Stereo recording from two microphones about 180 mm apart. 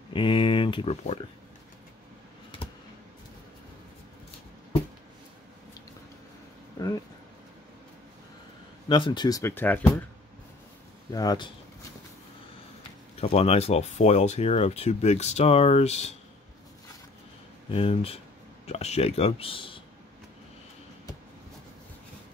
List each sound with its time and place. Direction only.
0.1 s speech: 30° left (ahead or behind)
8.8 s speech: 25° left (ahead or behind); by 10.0 s 10° left (ahead or behind)
11.1 s speech: 20° left (ahead or behind)
13.2 s speech: 35° left (ahead or behind)
17.6 s speech: 30° left (ahead or behind)